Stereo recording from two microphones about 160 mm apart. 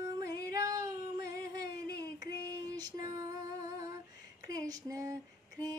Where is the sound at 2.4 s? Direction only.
25° right (ahead or behind).